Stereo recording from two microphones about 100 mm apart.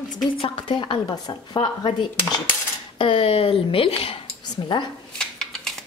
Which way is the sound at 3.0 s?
65° left (ahead or behind).